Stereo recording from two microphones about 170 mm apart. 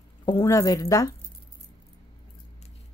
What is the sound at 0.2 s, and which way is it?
Speech, 25° left (ahead or behind).